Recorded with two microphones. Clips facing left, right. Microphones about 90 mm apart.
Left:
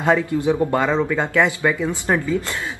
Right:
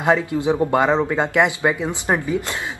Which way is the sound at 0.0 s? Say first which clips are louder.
Even; 20° right (ahead or behind).